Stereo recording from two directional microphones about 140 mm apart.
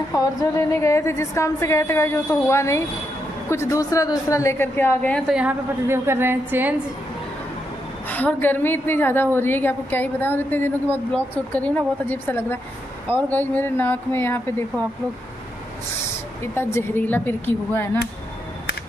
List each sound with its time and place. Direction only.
0.1 s a woman's voice: 25° left (ahead or behind)
5.3 s a woman's voice: 10° right (ahead or behind)
8.1 s a woman's voice: 10° left (ahead or behind)
16.5 s a woman's voice: 15° left (ahead or behind)